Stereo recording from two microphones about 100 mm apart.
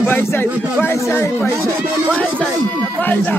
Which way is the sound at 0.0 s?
20° left (ahead or behind).